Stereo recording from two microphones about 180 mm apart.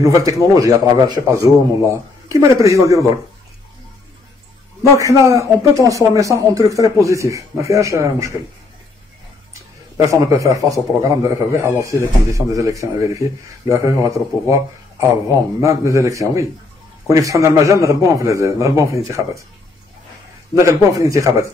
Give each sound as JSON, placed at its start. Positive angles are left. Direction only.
{"t": 0.0, "sound": "speech", "side_deg": -20}
{"t": 4.9, "sound": "speech", "side_deg": -15}
{"t": 10.0, "sound": "speech", "side_deg": -15}
{"t": 15.6, "sound": "speech", "side_deg": -15}
{"t": 20.5, "sound": "speech", "side_deg": -15}